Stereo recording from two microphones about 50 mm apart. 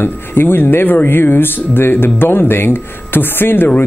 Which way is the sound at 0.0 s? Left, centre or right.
Left.